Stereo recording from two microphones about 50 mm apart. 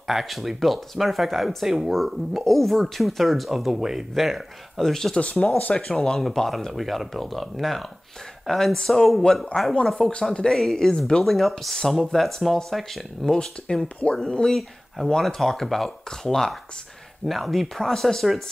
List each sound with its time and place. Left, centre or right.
0.0 s speech: centre
5.6 s speech: left
5.9 s speech: centre
9.5 s speech: centre
10.6 s speech: centre